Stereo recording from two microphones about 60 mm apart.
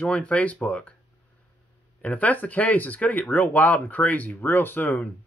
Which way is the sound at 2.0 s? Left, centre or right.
Left.